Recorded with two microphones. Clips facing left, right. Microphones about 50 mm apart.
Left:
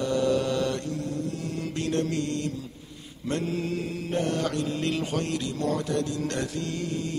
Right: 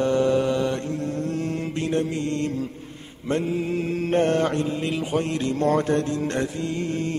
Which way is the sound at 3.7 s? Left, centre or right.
Right.